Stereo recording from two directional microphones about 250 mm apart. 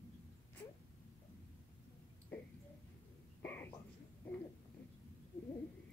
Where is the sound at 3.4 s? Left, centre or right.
Centre.